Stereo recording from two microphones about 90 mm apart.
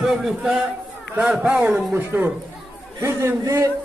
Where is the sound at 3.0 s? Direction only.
30° right (ahead or behind).